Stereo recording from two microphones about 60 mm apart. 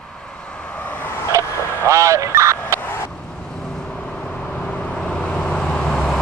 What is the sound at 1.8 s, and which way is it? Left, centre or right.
Speech, right.